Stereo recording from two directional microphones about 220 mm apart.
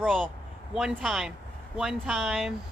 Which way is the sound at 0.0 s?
Centre (ahead or behind).